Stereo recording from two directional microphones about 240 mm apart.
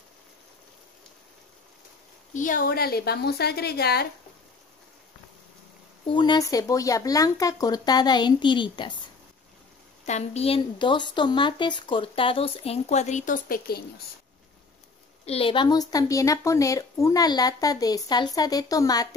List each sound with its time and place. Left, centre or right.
2.3 s a woman's voice: left
6.0 s a woman's voice: centre
10.0 s speech: left
15.2 s a woman's voice: left